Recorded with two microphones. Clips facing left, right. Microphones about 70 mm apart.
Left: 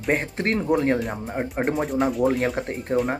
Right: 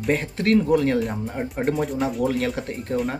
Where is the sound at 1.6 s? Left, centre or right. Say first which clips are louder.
Right 1 dB; left.